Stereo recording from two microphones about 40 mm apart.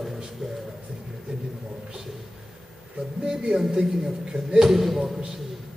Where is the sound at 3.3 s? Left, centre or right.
Centre.